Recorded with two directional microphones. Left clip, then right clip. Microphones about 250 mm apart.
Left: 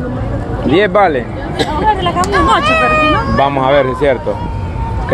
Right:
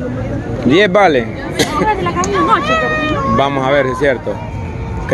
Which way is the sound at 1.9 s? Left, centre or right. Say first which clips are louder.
Left 3 dB; centre.